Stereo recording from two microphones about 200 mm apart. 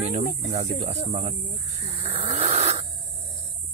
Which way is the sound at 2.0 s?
30° right (ahead or behind).